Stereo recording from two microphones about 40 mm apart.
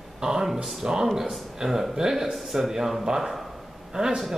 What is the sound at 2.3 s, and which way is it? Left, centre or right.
A woman's voice, centre.